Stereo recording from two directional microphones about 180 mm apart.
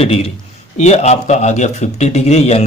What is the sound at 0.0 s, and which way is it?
Speech, 35° left (ahead or behind).